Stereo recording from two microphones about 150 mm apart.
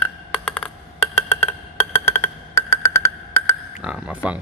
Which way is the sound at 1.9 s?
15° left (ahead or behind).